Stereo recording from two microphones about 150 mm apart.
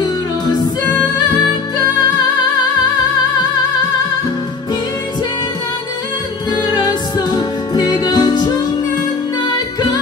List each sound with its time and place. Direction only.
1.2 s music: 25° left (ahead or behind)
6.5 s music: 30° left (ahead or behind)